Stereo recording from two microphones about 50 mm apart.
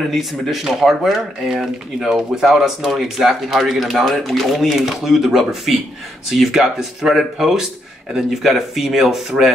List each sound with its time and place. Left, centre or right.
0.1 s speech: centre